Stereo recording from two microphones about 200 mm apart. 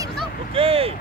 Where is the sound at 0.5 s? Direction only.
30° right (ahead or behind).